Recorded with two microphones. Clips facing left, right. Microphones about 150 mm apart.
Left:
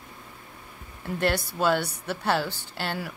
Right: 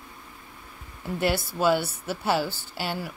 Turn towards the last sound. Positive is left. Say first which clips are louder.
# even
turn(degrees=-5)  # may be behind; listen again after turning